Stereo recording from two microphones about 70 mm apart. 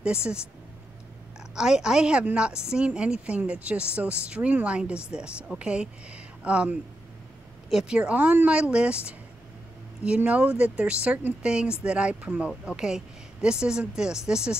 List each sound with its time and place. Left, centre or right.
0.0 s a woman's voice: centre
1.5 s a woman's voice: centre